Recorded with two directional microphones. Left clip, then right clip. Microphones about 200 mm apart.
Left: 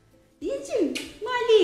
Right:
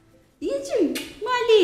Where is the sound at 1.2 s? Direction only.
10° right (ahead or behind).